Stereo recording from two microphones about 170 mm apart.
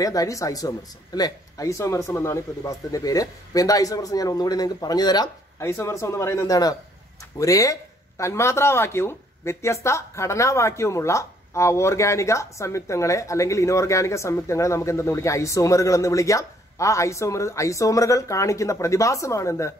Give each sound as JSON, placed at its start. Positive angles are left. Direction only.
{"t": 0.0, "sound": "speech", "side_deg": 20}